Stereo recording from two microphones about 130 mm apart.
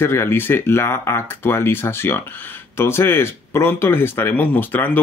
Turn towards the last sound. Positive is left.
turn(degrees=15)  # may be behind; listen again after turning